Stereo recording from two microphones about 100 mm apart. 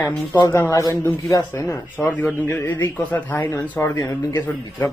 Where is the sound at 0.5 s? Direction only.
25° left (ahead or behind).